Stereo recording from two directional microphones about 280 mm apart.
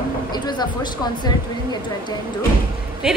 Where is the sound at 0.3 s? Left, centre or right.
Centre.